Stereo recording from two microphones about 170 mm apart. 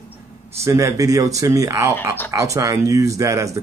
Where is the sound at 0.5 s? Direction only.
15° right (ahead or behind).